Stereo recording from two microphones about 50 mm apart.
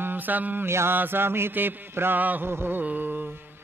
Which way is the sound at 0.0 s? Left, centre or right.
Right.